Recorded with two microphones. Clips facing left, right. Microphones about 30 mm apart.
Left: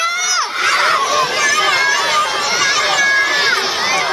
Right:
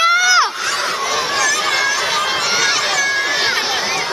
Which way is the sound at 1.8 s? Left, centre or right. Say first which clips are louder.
Left 3 dB; left.